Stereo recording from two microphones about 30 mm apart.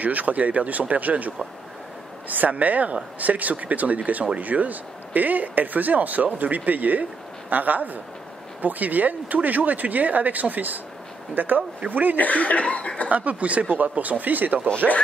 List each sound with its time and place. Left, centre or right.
0.0 s speech: right
11.3 s speech: right
12.2 s speech: left
13.1 s speech: right